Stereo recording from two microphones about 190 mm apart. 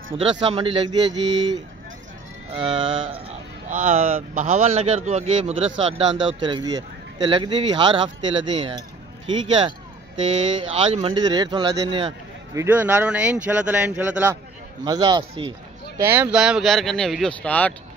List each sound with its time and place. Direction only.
0.1 s speech: 30° right (ahead or behind)
2.6 s speech: 30° right (ahead or behind)
10.7 s speech: 35° right (ahead or behind)
12.5 s speech: 10° right (ahead or behind)
14.9 s speech: 20° right (ahead or behind)
16.0 s speech: 10° right (ahead or behind); by 17.7 s 10° left (ahead or behind)